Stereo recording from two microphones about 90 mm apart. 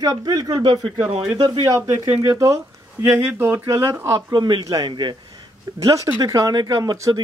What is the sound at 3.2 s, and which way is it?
Speech, 25° right (ahead or behind).